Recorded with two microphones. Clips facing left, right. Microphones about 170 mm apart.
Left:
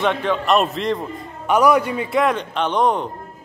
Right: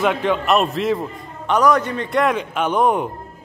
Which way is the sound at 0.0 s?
5° right (ahead or behind).